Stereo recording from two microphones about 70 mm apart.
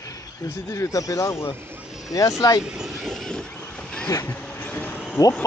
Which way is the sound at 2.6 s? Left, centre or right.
Centre.